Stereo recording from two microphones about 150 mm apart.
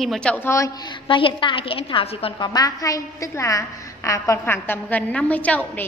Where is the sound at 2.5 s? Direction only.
25° left (ahead or behind).